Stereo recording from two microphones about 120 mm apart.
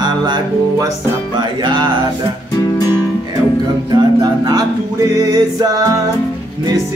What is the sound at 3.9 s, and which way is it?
Music, 35° right (ahead or behind).